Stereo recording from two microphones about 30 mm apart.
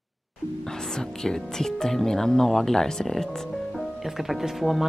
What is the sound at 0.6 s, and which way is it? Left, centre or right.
Speech, centre.